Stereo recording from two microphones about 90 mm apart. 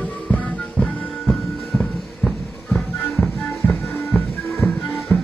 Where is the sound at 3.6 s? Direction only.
15° left (ahead or behind).